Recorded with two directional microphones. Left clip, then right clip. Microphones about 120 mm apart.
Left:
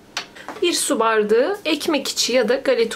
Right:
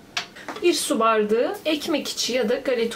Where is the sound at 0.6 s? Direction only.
40° left (ahead or behind).